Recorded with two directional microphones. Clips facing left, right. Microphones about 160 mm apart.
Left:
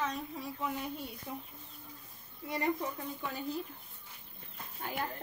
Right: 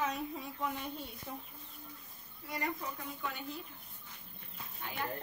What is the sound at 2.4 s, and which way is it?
Speech, 25° left (ahead or behind).